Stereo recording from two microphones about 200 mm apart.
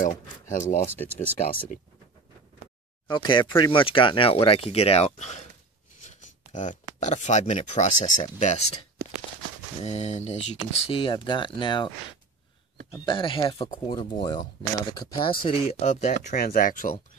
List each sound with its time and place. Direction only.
0.0 s a sound: 40° left (ahead or behind)
3.1 s speech: 20° left (ahead or behind)
5.9 s a sound: 35° left (ahead or behind)
7.0 s speech: 35° left (ahead or behind)
9.8 s speech: 35° left (ahead or behind)
12.9 s speech: 25° left (ahead or behind); by 16.9 s 45° left (ahead or behind)